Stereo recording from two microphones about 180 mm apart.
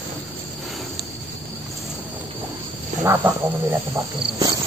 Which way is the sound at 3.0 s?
15° right (ahead or behind).